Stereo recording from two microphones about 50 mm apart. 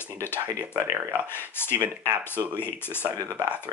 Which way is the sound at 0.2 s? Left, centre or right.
Left.